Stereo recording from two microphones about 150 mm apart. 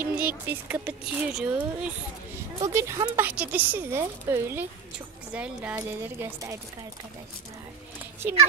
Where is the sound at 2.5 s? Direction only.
20° right (ahead or behind).